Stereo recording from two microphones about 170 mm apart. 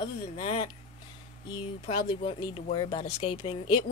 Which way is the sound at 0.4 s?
35° left (ahead or behind).